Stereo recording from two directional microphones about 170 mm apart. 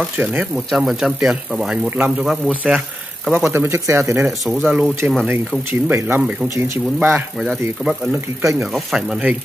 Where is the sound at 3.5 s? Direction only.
15° right (ahead or behind).